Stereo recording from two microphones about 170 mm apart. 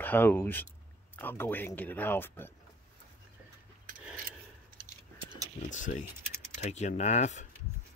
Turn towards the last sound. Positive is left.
turn(degrees=40)  # may be behind; listen again after turning